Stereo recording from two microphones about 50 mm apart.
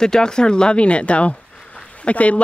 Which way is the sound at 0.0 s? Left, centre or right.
Centre.